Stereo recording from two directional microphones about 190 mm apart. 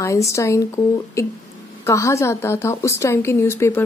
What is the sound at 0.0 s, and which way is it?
Speech, 15° left (ahead or behind).